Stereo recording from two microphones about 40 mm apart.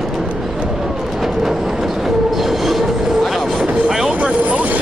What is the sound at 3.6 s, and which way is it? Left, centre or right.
Vehicle, right.